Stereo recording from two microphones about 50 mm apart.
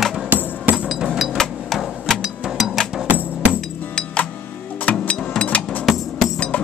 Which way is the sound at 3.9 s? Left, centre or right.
Left.